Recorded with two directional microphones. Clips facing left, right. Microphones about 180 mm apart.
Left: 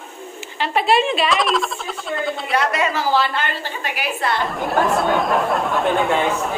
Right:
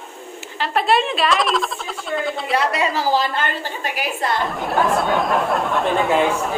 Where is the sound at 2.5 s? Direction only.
30° right (ahead or behind).